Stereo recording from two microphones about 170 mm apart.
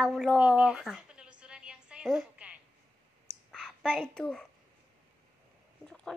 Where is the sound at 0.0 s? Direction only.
Centre (ahead or behind).